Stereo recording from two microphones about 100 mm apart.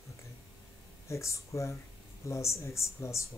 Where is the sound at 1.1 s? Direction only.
30° left (ahead or behind).